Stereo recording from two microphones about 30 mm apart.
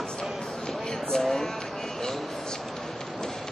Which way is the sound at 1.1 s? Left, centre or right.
Centre.